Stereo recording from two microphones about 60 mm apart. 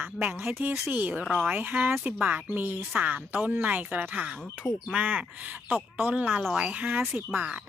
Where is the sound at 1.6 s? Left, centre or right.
Right.